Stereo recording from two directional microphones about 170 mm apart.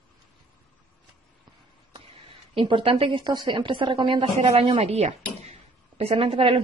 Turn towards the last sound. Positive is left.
turn(degrees=-35)  # may be behind; listen again after turning